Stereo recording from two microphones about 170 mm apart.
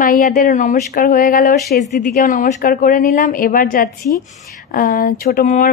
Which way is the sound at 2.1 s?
45° left (ahead or behind).